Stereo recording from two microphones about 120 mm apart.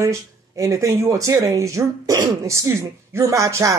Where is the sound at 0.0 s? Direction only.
25° right (ahead or behind).